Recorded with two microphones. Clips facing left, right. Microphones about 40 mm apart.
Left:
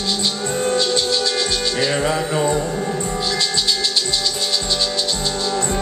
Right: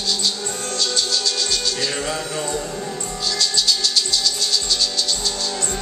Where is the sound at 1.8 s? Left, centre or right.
Left.